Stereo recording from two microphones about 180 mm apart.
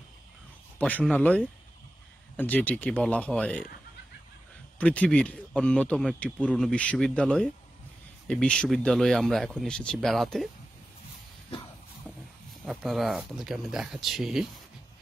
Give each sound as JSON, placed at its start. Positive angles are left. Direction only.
{"t": 0.7, "sound": "speech", "side_deg": 10}
{"t": 4.7, "sound": "speech", "side_deg": 5}
{"t": 12.1, "sound": "a sound", "side_deg": 10}
{"t": 12.6, "sound": "speech", "side_deg": 0}